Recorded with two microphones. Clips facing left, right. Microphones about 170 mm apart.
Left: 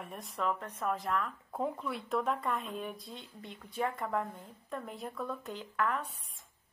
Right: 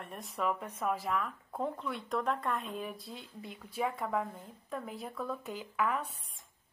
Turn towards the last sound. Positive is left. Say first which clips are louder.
# even
turn(degrees=-10)  # may be behind; listen again after turning